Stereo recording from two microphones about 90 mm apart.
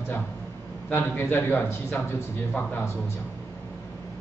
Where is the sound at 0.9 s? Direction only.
20° left (ahead or behind).